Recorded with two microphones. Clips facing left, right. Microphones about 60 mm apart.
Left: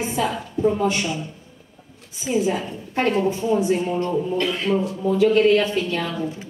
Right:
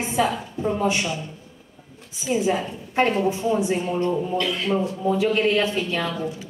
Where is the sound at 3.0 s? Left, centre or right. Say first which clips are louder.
Even; right.